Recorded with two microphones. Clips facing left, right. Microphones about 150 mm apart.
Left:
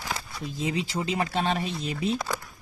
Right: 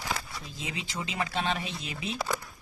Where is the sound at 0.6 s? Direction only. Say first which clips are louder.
Left 9 dB; 35° left (ahead or behind).